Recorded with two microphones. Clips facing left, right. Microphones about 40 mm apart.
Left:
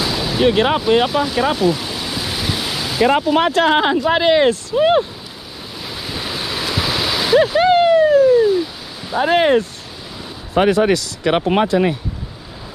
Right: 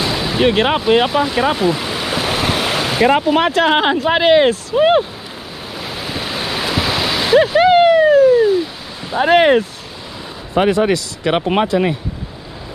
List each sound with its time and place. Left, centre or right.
0.0 s waves: centre
3.1 s speech: centre
5.8 s waves: right
8.1 s a sound: centre
9.1 s speech: centre
10.6 s speech: centre
10.9 s speech: centre